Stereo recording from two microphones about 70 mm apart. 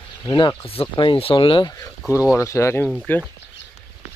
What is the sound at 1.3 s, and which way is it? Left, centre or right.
Speech, left.